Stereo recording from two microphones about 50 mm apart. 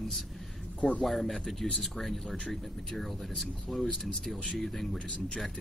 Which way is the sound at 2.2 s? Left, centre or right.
Centre.